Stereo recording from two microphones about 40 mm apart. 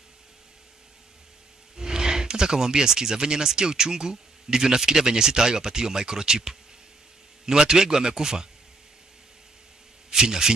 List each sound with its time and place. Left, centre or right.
1.8 s speech: centre
10.0 s speech: centre